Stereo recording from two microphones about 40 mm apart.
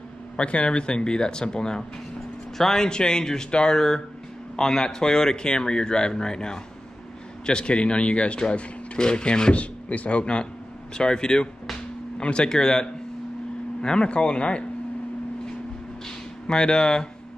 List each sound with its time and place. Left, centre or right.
0.4 s speech: left
2.5 s speech: centre
2.9 s speech: centre
12.4 s speech: centre
16.4 s speech: centre